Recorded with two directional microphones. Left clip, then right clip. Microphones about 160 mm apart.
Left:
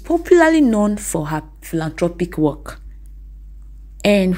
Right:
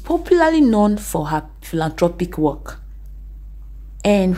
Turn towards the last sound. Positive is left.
turn(degrees=15)  # may be behind; listen again after turning